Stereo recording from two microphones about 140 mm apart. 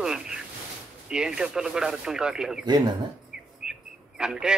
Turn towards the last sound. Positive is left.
turn(degrees=-5)  # may be behind; listen again after turning